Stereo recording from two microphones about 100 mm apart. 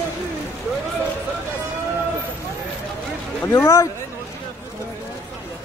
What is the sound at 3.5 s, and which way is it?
Speech, 35° left (ahead or behind).